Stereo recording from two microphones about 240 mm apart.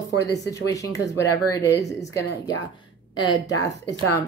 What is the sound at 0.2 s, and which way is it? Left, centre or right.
Speech, centre.